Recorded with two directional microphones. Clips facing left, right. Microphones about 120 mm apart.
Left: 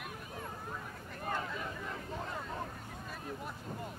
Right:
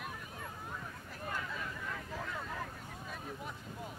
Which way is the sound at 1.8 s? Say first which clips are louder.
Left 1 dB; 30° left (ahead or behind).